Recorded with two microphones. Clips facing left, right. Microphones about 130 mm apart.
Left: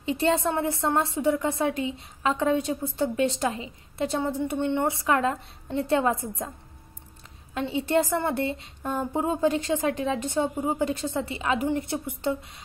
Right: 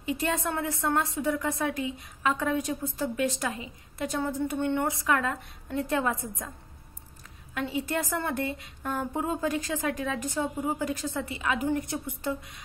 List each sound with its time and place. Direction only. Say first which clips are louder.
0.0 s a woman's voice: left 5 dB; 30° left (ahead or behind)
7.5 s a woman's voice: left 6 dB; 25° left (ahead or behind)